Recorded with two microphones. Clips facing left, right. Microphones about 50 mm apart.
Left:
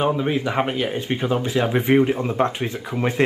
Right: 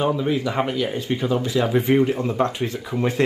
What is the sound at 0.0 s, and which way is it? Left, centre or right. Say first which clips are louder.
Speech: even; left.